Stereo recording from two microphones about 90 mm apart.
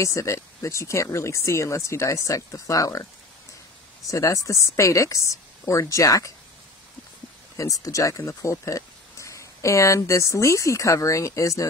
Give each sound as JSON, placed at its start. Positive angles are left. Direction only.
{"t": 0.0, "sound": "speech", "side_deg": 35}
{"t": 4.1, "sound": "speech", "side_deg": 40}
{"t": 7.5, "sound": "speech", "side_deg": 40}